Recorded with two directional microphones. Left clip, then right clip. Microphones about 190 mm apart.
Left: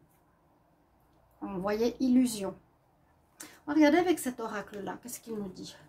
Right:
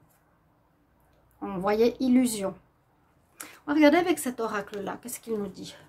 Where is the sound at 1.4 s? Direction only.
25° right (ahead or behind).